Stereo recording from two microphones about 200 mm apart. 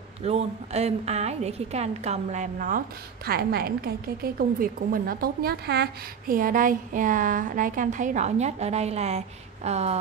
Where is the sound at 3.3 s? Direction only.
50° right (ahead or behind).